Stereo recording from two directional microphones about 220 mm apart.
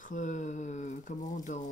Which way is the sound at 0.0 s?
35° left (ahead or behind).